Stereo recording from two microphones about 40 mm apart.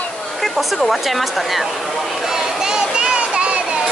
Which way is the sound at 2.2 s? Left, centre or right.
Centre.